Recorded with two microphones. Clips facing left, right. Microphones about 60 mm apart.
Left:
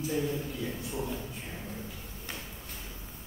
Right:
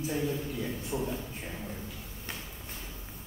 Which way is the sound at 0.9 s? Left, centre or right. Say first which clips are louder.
Right 4 dB; centre.